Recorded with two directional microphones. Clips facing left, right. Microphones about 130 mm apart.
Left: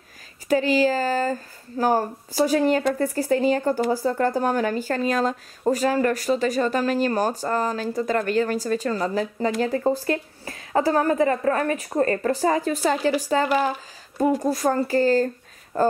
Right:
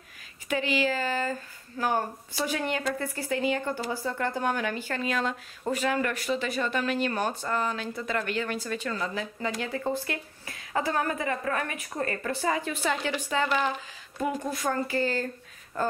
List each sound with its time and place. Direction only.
0.5 s speech: 35° left (ahead or behind)